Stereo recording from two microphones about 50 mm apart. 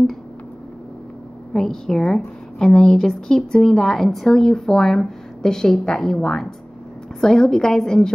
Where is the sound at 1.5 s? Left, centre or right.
Centre.